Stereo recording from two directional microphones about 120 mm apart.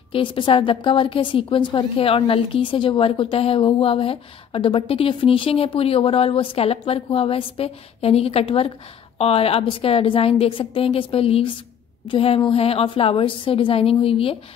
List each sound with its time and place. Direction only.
0.1 s a woman's voice: 45° left (ahead or behind)